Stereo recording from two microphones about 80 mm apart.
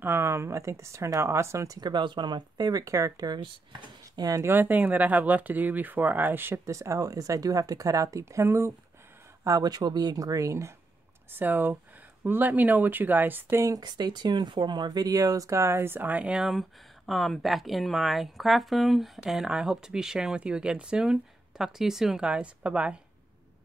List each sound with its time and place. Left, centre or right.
0.0 s speech: right
1.8 s speech: right
2.8 s speech: right
4.4 s speech: right
6.6 s speech: right
9.4 s speech: right
11.3 s speech: right
13.7 s speech: right; by 16.4 s centre
16.4 s speech: centre